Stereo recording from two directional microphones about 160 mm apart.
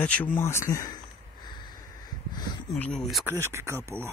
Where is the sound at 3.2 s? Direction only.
15° right (ahead or behind).